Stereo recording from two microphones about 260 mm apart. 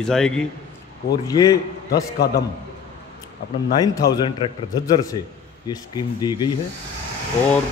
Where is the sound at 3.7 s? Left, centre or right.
Centre.